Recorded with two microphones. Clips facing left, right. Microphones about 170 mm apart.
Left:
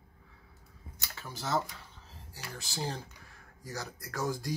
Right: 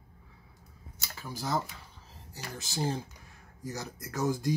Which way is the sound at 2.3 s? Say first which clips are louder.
Right 3 dB; 20° right (ahead or behind).